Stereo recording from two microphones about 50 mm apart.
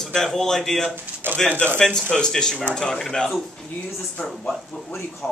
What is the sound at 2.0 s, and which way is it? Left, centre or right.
Speech, centre.